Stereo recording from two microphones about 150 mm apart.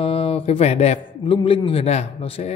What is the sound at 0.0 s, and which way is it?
Mantra, 35° left (ahead or behind).